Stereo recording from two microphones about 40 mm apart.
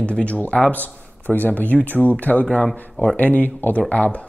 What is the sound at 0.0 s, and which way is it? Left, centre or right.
Speech, left.